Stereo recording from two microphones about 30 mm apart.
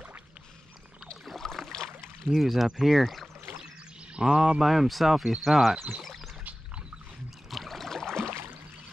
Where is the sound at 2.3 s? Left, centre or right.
Centre.